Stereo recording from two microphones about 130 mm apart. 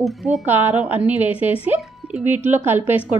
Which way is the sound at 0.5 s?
15° right (ahead or behind).